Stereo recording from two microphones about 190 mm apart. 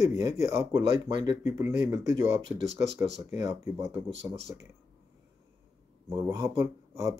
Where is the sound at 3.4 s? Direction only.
15° right (ahead or behind).